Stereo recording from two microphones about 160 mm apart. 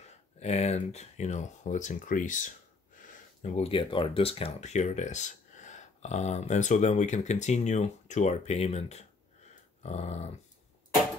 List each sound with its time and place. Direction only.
0.4 s speech: 45° left (ahead or behind)
3.5 s speech: 35° left (ahead or behind)